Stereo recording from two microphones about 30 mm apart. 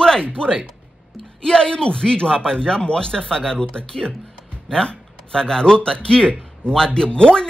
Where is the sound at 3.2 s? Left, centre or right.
Centre.